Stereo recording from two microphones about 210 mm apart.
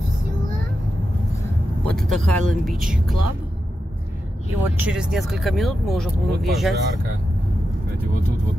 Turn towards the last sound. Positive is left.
turn(degrees=0)  # may be behind; listen again after turning